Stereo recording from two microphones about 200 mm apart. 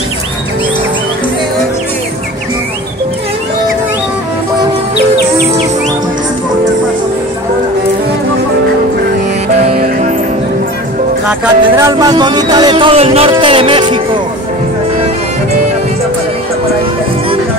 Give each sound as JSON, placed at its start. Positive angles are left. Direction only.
{"t": 9.8, "sound": "music", "side_deg": -40}
{"t": 11.2, "sound": "music", "side_deg": -5}
{"t": 11.8, "sound": "speech", "side_deg": -20}